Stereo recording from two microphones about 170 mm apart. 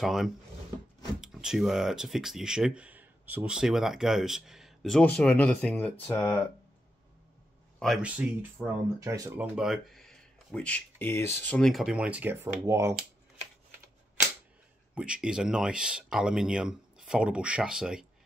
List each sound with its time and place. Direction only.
0.0 s speech: centre (ahead or behind)
7.8 s speech: 5° right (ahead or behind); by 9.3 s 20° right (ahead or behind)
9.4 s speech: centre (ahead or behind)
15.0 s speech: 5° right (ahead or behind)